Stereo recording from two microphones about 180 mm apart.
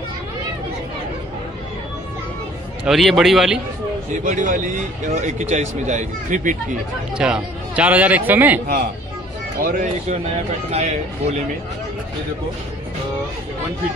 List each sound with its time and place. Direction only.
2.8 s a man's voice: centre (ahead or behind)
4.1 s speech: 45° right (ahead or behind)
7.2 s a man's voice: 5° right (ahead or behind)
9.6 s speech: 50° right (ahead or behind)
10.7 s speech: 40° right (ahead or behind)